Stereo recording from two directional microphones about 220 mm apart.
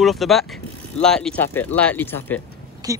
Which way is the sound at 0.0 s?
Centre (ahead or behind).